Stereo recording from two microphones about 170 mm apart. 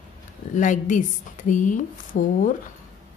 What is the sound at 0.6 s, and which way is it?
A woman's voice, 50° left (ahead or behind).